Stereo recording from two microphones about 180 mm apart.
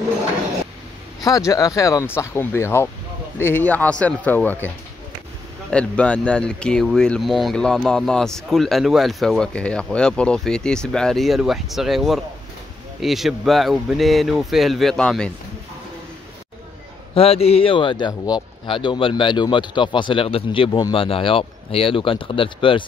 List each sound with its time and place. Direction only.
1.2 s speech: 20° left (ahead or behind)
17.1 s a man's voice: 30° left (ahead or behind)